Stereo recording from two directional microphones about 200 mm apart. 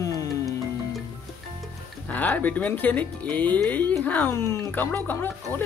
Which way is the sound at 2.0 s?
10° left (ahead or behind).